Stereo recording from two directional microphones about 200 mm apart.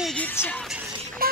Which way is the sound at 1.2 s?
45° right (ahead or behind).